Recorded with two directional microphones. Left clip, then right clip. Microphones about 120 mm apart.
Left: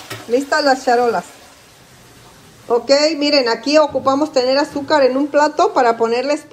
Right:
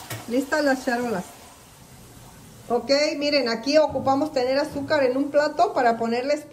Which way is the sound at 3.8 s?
25° left (ahead or behind).